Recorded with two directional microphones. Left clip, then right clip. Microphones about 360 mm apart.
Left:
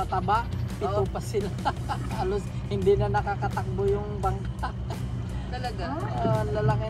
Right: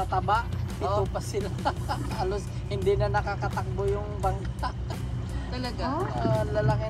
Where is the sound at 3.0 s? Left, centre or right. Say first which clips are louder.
Left 1 dB; right.